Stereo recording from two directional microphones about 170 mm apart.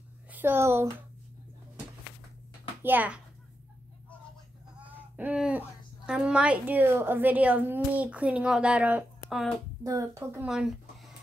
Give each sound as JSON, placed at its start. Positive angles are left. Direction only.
{"t": 0.3, "sound": "speech", "side_deg": -10}
{"t": 2.8, "sound": "a woman's voice", "side_deg": -10}
{"t": 5.1, "sound": "a woman's voice", "side_deg": -5}
{"t": 9.8, "sound": "a child's voice", "side_deg": -20}
{"t": 10.4, "sound": "a sound", "side_deg": -5}